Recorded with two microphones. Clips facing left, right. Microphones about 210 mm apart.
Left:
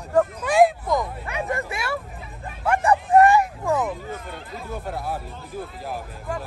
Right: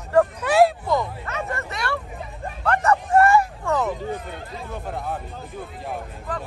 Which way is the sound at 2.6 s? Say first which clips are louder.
Even; 10° left (ahead or behind).